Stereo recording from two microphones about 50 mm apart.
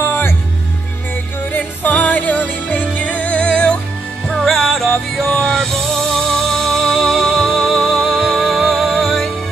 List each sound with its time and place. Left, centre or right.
0.0 s music: left
1.5 s music: left
4.3 s music: centre